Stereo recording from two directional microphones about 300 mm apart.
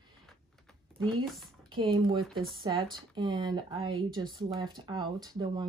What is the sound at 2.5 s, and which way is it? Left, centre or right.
Speech, centre.